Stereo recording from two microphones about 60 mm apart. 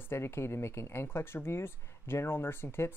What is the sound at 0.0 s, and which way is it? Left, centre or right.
Speech, left.